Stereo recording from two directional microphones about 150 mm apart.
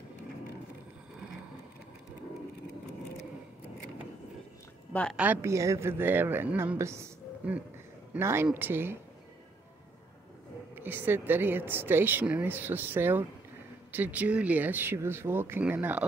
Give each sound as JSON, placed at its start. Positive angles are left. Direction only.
{"t": 5.1, "sound": "speech", "side_deg": -10}
{"t": 10.7, "sound": "speech", "side_deg": -15}